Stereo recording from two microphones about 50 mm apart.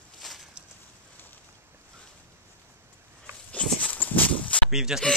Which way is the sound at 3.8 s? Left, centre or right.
Left.